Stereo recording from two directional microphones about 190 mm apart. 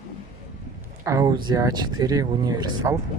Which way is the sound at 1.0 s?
15° right (ahead or behind).